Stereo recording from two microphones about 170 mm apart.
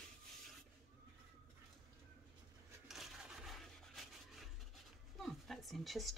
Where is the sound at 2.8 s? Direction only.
Centre (ahead or behind).